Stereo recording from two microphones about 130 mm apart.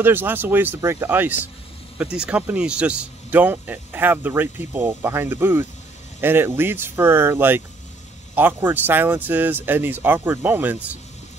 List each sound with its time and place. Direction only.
0.0 s speech: 15° right (ahead or behind)